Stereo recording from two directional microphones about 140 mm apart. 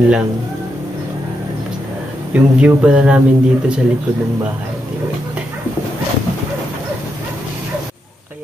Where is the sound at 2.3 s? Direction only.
10° right (ahead or behind).